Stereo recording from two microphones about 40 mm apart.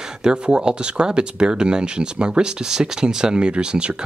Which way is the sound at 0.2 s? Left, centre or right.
Right.